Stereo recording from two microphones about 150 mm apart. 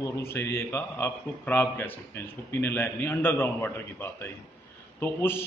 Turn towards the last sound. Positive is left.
turn(degrees=15)  # may be behind; listen again after turning